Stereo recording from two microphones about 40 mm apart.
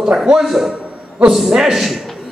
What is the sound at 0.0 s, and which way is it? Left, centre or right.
A man's voice, centre.